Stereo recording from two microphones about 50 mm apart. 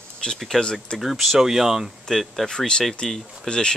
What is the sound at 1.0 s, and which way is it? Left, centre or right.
Speech, centre.